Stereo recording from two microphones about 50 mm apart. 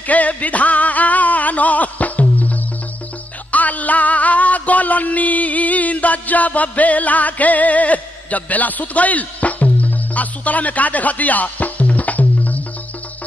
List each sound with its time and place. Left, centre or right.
0.0 s music: left
3.5 s music: left